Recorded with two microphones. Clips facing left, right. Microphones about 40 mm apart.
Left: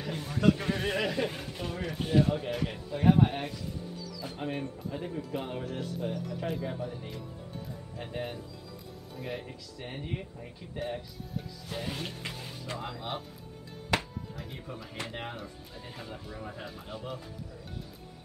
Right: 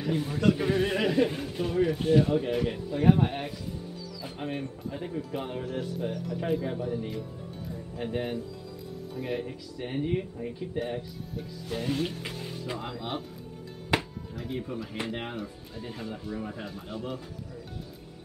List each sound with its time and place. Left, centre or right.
0.0 s speech: centre
13.9 s music: centre
14.5 s speech: centre